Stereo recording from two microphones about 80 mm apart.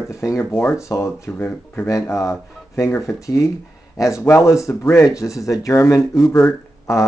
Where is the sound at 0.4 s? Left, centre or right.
Left.